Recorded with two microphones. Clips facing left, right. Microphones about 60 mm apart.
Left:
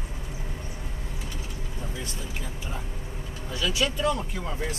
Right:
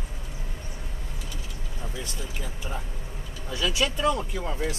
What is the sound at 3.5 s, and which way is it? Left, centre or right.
Speech, right.